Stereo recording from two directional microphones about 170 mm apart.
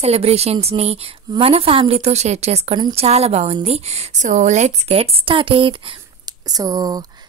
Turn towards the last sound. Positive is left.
turn(degrees=-20)  # may be behind; listen again after turning